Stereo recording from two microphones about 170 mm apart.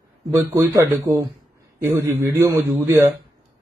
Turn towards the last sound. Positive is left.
turn(degrees=-15)  # may be behind; listen again after turning